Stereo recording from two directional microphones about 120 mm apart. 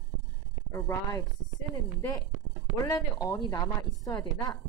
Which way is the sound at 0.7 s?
25° left (ahead or behind).